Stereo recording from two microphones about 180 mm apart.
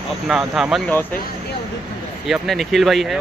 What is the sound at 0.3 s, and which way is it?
Speech, centre (ahead or behind).